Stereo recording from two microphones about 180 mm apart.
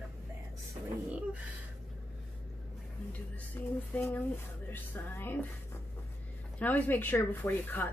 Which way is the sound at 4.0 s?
10° left (ahead or behind).